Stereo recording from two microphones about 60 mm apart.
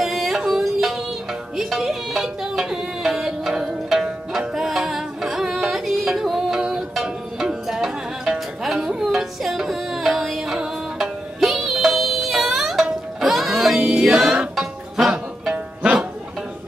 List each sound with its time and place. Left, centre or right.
0.0 s music: centre
15.8 s music: right